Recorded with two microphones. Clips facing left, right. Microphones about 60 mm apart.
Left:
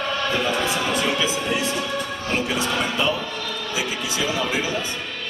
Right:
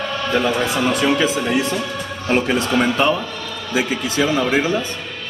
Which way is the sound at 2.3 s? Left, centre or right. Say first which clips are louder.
Right 6 dB; right.